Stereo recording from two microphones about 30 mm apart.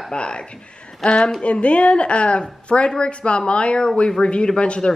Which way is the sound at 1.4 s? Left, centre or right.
Left.